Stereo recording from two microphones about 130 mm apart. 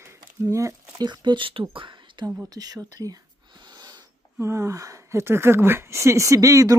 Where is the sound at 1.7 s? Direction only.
40° right (ahead or behind).